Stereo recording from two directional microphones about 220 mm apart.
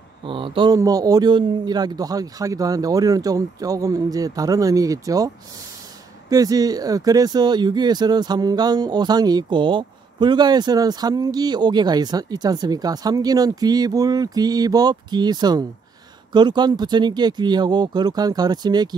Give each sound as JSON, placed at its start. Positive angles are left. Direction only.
{"t": 0.2, "sound": "speech", "side_deg": -25}
{"t": 6.3, "sound": "speech", "side_deg": -15}